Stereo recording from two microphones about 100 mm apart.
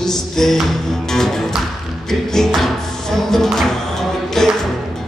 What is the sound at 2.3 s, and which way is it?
Music, centre (ahead or behind).